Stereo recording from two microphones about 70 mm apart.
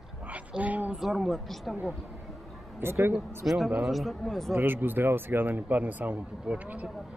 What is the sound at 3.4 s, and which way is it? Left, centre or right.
Speech, centre.